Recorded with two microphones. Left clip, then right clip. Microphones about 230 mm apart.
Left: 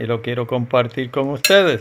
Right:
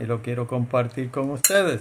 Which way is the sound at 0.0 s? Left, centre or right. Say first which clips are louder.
Left 6 dB; centre.